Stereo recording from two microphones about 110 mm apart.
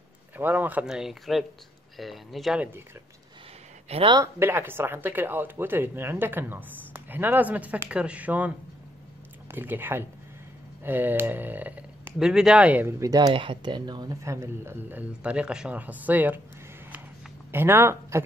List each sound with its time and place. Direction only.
0.4 s speech: 15° right (ahead or behind)
0.8 s speech: 5° right (ahead or behind)
3.9 s speech: 70° right (ahead or behind)
4.4 s speech: 20° right (ahead or behind)
12.8 s speech: 30° right (ahead or behind)
13.3 s speech: 50° right (ahead or behind)
14.2 s speech: 25° right (ahead or behind)
17.5 s speech: 20° right (ahead or behind)